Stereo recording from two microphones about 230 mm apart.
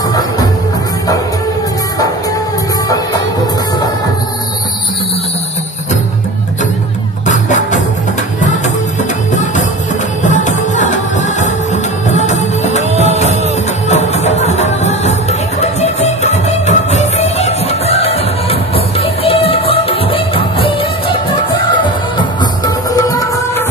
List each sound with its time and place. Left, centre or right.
2.9 s music: centre
7.2 s music: left
9.3 s music: left
12.9 s music: right
13.8 s music: left
22.9 s music: centre